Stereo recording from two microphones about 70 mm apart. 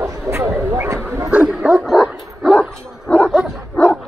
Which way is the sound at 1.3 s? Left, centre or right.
Centre.